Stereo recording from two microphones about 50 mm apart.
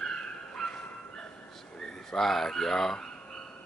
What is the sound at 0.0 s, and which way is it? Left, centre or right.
Dog, centre.